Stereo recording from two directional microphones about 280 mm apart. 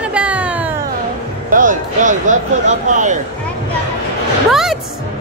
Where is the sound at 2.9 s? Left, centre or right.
Right.